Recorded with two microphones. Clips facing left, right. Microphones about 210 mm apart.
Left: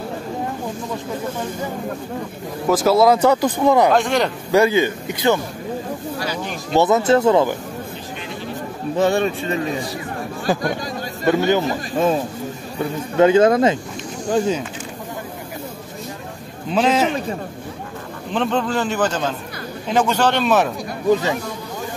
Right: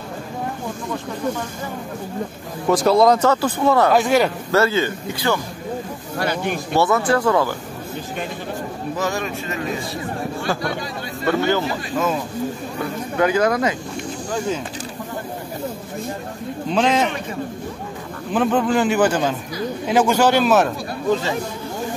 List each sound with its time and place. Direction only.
2.7 s speech: 5° left (ahead or behind)
3.9 s speech: 5° right (ahead or behind)
4.5 s speech: 15° left (ahead or behind)
6.1 s speech: 55° right (ahead or behind)
6.7 s speech: 20° left (ahead or behind)
8.9 s speech: 30° left (ahead or behind)
11.2 s speech: 20° left (ahead or behind)
12.0 s speech: 30° left (ahead or behind)
13.2 s speech: 25° left (ahead or behind)
16.7 s speech: 5° left (ahead or behind)
18.3 s speech: 5° right (ahead or behind)
21.1 s speech: 15° left (ahead or behind)